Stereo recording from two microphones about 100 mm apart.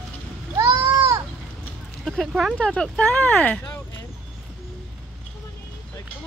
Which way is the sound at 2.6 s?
10° left (ahead or behind).